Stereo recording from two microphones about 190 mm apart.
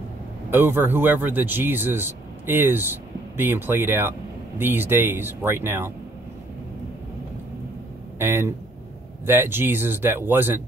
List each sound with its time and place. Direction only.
0.5 s speech: 10° right (ahead or behind)
8.2 s speech: 10° right (ahead or behind)